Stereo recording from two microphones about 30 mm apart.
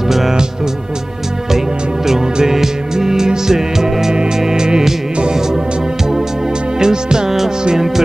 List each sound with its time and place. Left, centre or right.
2.4 s music: centre
6.8 s music: right
7.2 s music: centre